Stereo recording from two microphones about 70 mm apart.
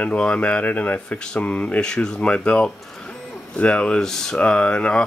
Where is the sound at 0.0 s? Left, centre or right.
Centre.